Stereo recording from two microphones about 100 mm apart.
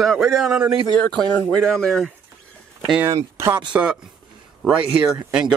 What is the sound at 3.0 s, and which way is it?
Speech, 25° right (ahead or behind).